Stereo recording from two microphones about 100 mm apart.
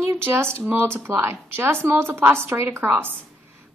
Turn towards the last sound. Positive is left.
turn(degrees=-20)  # may be behind; listen again after turning